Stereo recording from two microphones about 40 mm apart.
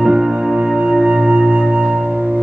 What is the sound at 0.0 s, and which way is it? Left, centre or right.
Music, centre.